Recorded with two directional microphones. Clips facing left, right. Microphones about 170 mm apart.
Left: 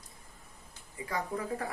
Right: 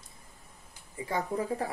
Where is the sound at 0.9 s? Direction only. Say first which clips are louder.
Right 4 dB; 25° right (ahead or behind).